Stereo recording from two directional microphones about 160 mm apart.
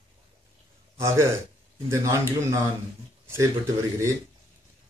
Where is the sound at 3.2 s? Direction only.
15° right (ahead or behind).